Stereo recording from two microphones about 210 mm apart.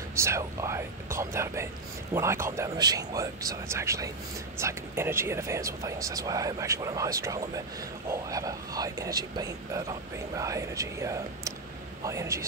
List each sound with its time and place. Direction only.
0.1 s whispering: 15° right (ahead or behind)
1.1 s music: 15° right (ahead or behind)
2.1 s speech: 15° right (ahead or behind)